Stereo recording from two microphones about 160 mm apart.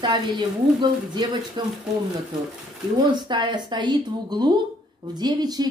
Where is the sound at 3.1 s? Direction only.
30° right (ahead or behind).